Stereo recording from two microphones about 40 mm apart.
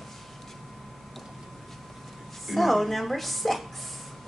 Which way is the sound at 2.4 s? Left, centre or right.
Centre.